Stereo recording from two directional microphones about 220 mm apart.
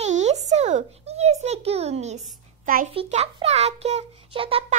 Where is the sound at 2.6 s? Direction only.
35° right (ahead or behind).